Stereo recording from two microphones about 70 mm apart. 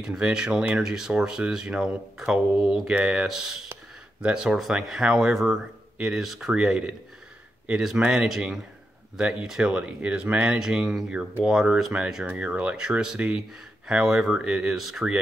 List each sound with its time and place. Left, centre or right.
0.0 s speech: centre
7.7 s speech: centre; by 10.6 s right
10.6 s speech: centre